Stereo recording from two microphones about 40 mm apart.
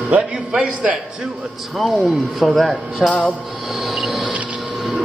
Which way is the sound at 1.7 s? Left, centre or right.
Centre.